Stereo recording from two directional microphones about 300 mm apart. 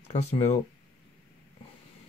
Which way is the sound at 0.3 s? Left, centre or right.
Left.